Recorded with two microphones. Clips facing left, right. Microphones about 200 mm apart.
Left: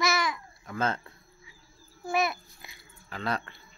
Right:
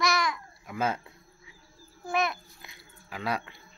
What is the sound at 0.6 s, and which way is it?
Speech, 10° right (ahead or behind).